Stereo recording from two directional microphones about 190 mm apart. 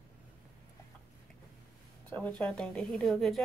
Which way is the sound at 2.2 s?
5° left (ahead or behind).